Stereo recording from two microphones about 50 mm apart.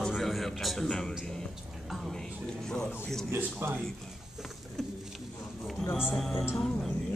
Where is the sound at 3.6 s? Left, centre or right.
Right.